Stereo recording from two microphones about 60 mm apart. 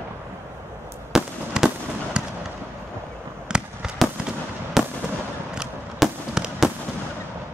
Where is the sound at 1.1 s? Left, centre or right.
Centre.